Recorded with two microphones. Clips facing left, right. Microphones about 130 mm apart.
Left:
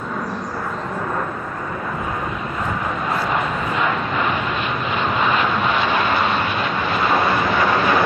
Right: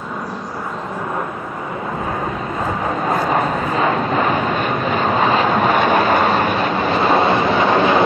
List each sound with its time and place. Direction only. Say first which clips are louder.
3.1 s vehicle: right 5 dB; 40° right (ahead or behind)